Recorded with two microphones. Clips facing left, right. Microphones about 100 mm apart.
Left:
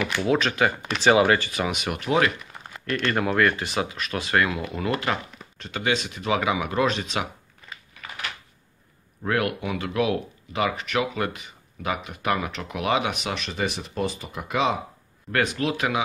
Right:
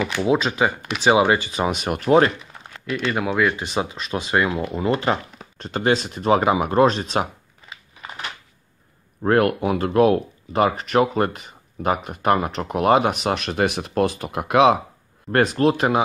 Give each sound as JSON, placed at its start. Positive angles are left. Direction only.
{"t": 0.0, "sound": "speech", "side_deg": -15}
{"t": 2.9, "sound": "speech", "side_deg": -5}
{"t": 3.6, "sound": "speech", "side_deg": -25}
{"t": 5.6, "sound": "speech", "side_deg": -40}
{"t": 9.2, "sound": "speech", "side_deg": -45}
{"t": 15.3, "sound": "speech", "side_deg": -40}